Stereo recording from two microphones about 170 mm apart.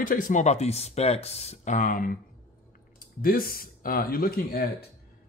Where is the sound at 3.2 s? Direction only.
60° left (ahead or behind).